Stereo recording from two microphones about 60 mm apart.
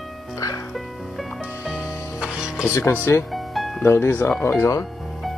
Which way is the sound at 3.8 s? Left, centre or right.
Left.